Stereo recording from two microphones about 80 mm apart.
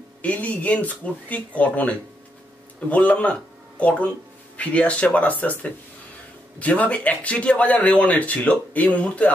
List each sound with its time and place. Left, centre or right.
0.2 s a man's voice: centre